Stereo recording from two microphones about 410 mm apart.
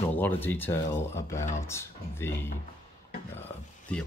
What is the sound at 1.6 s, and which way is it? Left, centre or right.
Speech, centre.